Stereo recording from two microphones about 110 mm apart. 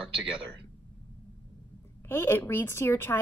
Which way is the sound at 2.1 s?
20° left (ahead or behind).